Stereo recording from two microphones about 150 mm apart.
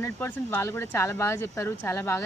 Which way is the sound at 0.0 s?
15° left (ahead or behind).